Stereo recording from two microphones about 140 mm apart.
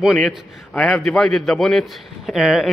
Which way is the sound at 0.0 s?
Centre (ahead or behind).